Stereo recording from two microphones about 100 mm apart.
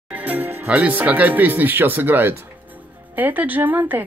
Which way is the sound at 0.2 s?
20° right (ahead or behind).